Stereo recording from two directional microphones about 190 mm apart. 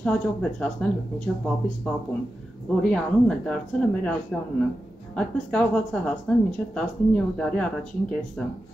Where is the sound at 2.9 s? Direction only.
5° left (ahead or behind).